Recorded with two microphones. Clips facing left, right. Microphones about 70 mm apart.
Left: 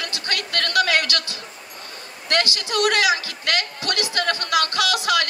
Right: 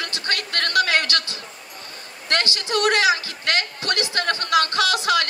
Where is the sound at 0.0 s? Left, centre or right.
Right.